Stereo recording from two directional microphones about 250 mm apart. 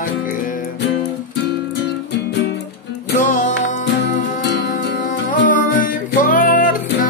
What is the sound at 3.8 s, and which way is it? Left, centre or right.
Music, left.